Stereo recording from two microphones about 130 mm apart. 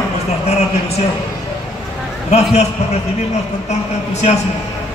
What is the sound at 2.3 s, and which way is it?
Speech, 55° left (ahead or behind).